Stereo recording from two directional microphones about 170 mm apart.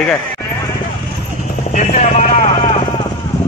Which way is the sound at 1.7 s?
45° left (ahead or behind).